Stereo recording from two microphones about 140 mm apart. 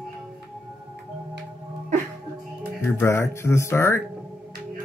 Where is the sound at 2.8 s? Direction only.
20° left (ahead or behind).